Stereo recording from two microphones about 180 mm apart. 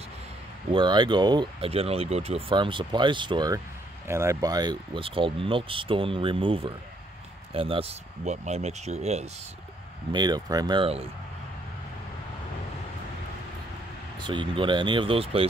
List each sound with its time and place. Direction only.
0.7 s speech: 25° right (ahead or behind)
10.1 s speech: 20° right (ahead or behind)
14.2 s speech: 25° right (ahead or behind)